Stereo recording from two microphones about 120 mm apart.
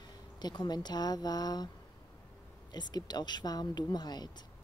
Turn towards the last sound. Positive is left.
turn(degrees=35)  # may be behind; listen again after turning